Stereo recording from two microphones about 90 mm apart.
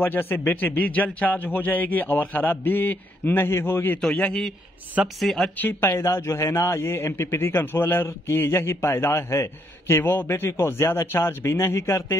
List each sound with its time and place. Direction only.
0.0 s a man's voice: 25° left (ahead or behind)
4.2 s speech: 5° left (ahead or behind)
5.6 s a man's voice: 25° left (ahead or behind)